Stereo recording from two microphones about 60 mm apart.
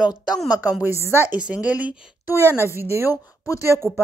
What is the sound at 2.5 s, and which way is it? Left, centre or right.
Speech, right.